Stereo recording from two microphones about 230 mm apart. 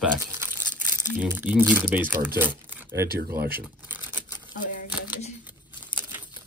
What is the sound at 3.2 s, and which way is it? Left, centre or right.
Speech, right.